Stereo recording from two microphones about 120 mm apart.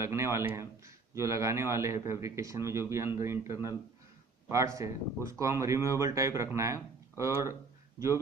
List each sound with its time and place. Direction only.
0.0 s a man's voice: 25° right (ahead or behind)